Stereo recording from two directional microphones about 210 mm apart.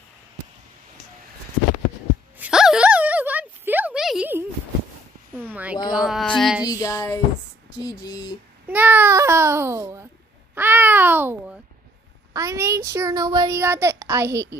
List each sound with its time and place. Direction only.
2.3 s a sound: 5° right (ahead or behind)
6.6 s child singing: 15° left (ahead or behind)
7.8 s speech: 20° left (ahead or behind)
8.6 s babbling: 10° right (ahead or behind)
12.4 s a woman's voice: 15° right (ahead or behind)